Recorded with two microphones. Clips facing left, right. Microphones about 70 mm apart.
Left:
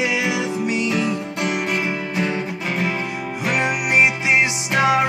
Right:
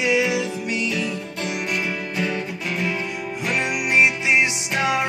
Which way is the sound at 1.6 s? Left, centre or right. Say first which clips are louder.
Left 3 dB; left.